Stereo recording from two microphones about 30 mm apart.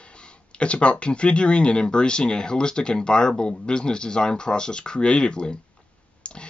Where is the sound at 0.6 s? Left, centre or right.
Left.